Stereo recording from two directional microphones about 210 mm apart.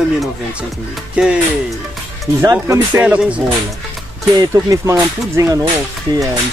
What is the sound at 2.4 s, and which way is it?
Speech, 15° right (ahead or behind).